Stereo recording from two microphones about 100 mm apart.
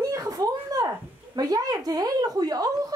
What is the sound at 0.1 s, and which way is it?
Speech, 35° right (ahead or behind).